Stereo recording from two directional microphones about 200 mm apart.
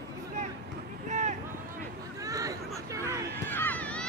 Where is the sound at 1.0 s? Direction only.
35° right (ahead or behind).